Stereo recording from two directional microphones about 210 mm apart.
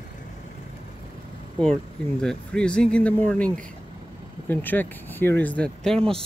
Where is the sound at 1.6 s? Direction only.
5° left (ahead or behind).